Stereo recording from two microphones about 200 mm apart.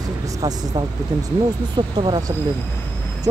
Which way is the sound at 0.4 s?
20° right (ahead or behind).